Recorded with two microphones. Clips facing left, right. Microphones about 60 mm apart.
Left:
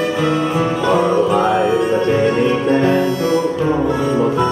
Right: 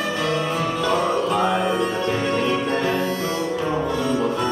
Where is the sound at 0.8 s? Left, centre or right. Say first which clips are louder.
Left 7 dB; centre.